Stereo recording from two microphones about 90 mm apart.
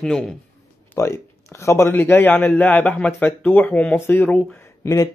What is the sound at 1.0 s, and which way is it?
Speech, 35° left (ahead or behind).